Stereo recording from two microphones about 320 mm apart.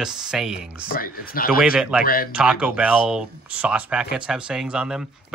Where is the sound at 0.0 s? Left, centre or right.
Centre.